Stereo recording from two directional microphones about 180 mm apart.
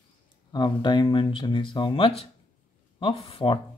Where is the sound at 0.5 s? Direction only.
25° left (ahead or behind).